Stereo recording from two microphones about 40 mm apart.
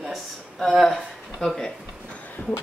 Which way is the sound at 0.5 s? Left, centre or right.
Centre.